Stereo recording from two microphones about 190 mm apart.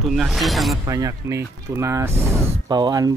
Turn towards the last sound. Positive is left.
turn(degrees=-20)  # may be behind; listen again after turning